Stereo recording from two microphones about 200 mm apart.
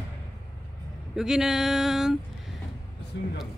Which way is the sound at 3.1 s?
60° left (ahead or behind).